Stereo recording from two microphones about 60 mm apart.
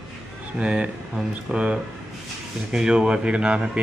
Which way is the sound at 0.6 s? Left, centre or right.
Centre.